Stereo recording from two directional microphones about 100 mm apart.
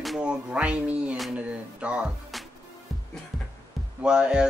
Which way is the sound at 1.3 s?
10° right (ahead or behind).